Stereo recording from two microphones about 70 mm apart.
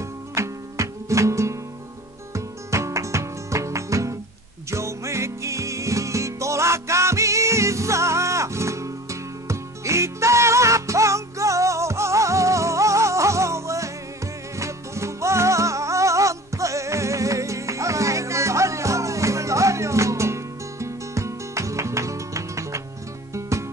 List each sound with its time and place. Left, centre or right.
0.3 s music: right